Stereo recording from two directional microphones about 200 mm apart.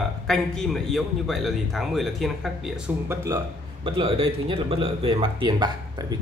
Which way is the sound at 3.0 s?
15° right (ahead or behind).